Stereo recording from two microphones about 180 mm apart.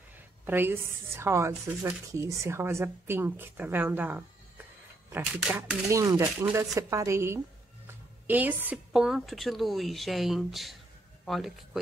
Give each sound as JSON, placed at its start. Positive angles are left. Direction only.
{"t": 0.5, "sound": "speech", "side_deg": -10}
{"t": 5.2, "sound": "speech", "side_deg": -5}
{"t": 5.9, "sound": "speech", "side_deg": -15}
{"t": 7.8, "sound": "music", "side_deg": -10}
{"t": 8.6, "sound": "speech", "side_deg": -5}